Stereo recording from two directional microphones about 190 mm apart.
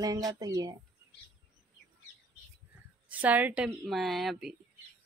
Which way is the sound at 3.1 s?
10° right (ahead or behind).